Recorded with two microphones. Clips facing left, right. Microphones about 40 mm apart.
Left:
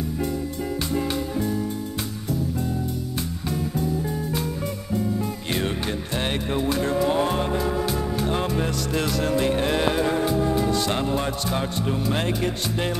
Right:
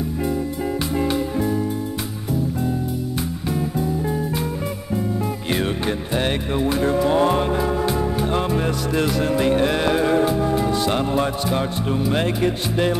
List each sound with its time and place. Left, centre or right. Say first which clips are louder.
0.9 s music: right 4 dB; centre
3.4 s music: right 3 dB; centre
6.1 s music: right 3 dB; centre